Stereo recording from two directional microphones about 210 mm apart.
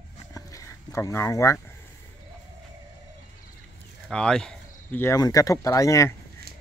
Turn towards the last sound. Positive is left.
turn(degrees=-50)  # may be behind; listen again after turning